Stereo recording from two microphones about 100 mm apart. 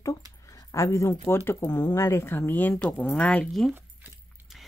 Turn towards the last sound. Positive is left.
turn(degrees=0)  # may be behind; listen again after turning